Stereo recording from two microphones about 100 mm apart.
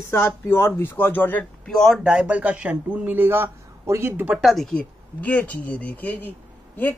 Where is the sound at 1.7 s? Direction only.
Centre (ahead or behind); by 4.3 s 20° right (ahead or behind).